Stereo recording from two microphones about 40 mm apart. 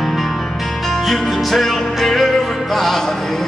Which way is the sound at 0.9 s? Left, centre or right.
Centre.